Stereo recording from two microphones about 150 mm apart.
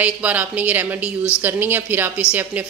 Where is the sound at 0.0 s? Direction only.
10° right (ahead or behind).